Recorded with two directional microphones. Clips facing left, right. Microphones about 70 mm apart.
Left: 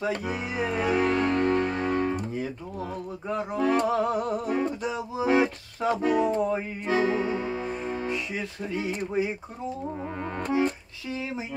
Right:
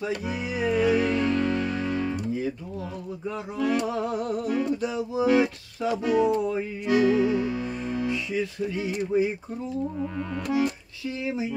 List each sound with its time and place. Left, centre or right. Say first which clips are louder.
0.0 s music: even; left
3.3 s a sound: left 2 dB; left
10.3 s speech: even; left